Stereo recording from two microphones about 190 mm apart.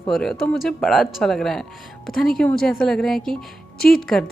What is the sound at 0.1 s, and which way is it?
Speech, centre (ahead or behind).